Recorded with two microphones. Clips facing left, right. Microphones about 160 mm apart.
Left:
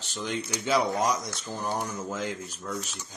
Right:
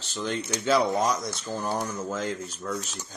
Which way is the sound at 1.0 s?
15° left (ahead or behind).